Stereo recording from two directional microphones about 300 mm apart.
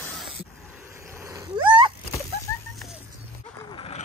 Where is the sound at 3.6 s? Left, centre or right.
Centre.